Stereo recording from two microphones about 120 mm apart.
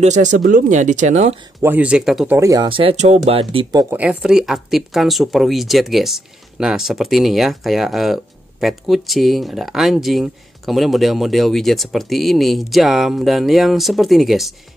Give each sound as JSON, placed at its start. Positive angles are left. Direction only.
{"t": 0.0, "sound": "speech", "side_deg": -85}
{"t": 1.6, "sound": "speech", "side_deg": -15}
{"t": 2.4, "sound": "speech", "side_deg": -30}
{"t": 2.7, "sound": "speech", "side_deg": -50}
{"t": 3.9, "sound": "speech", "side_deg": -10}